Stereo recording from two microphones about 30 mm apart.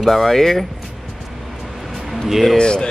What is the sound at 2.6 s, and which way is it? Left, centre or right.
Speech, left.